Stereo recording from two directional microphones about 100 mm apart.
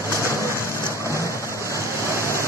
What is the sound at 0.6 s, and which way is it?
Rain, 30° right (ahead or behind).